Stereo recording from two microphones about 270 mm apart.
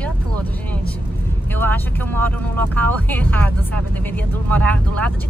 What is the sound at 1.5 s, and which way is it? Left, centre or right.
Speech, centre.